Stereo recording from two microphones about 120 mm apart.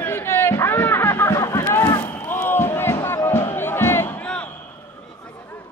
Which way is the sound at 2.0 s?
15° left (ahead or behind).